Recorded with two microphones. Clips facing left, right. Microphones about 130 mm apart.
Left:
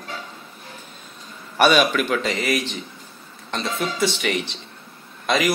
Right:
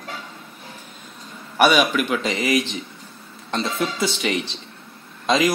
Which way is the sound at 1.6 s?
10° right (ahead or behind).